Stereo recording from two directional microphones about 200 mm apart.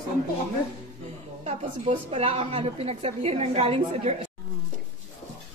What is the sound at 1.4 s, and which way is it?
A woman's voice, 30° right (ahead or behind).